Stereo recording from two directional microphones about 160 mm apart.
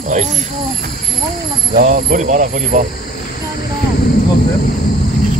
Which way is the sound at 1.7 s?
65° right (ahead or behind).